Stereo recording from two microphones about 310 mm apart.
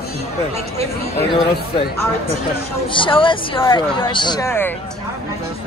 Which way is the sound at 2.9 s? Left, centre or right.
Centre.